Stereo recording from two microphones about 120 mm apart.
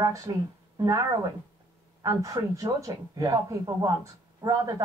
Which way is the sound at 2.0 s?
30° right (ahead or behind).